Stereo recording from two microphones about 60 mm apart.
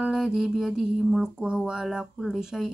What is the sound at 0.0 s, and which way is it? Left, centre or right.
Speech, centre.